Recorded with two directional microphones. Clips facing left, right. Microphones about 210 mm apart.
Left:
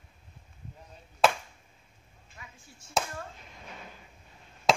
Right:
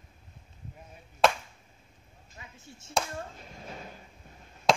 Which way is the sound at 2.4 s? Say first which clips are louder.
Right 3 dB; 25° right (ahead or behind).